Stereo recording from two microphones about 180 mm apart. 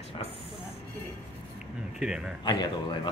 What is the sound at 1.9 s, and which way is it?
Speech, 5° right (ahead or behind).